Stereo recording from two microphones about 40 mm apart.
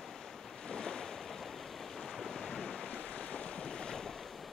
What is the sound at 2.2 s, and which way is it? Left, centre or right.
Waves, centre.